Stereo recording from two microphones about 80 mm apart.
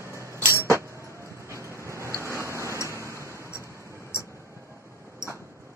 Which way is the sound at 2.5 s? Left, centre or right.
Right.